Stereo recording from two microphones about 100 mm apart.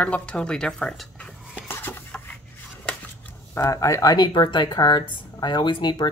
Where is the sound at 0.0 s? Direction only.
10° left (ahead or behind).